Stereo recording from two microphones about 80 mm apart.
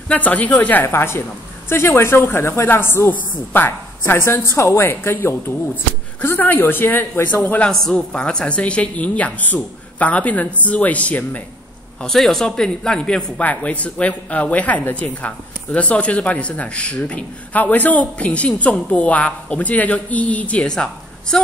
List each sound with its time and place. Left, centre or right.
0.1 s a woman's voice: centre
7.7 s speech: centre
12.0 s speech: centre